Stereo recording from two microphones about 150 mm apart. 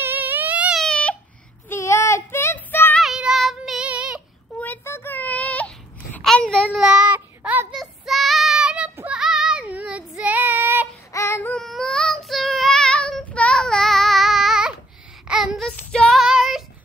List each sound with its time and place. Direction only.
0.0 s a sound: 10° right (ahead or behind); by 1.1 s 5° left (ahead or behind)
1.7 s child singing: 20° left (ahead or behind)
3.0 s child singing: 5° right (ahead or behind)
4.6 s a sound: 15° left (ahead or behind)
6.7 s child singing: 5° right (ahead or behind)
11.1 s child singing: 20° left (ahead or behind)
11.5 s child singing: centre (ahead or behind)